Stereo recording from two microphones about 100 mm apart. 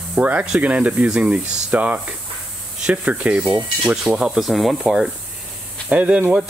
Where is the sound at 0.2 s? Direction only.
15° right (ahead or behind).